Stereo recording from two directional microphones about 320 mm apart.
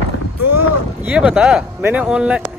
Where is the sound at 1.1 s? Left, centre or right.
Centre.